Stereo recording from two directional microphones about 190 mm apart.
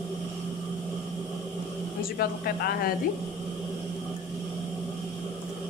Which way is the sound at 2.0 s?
55° left (ahead or behind).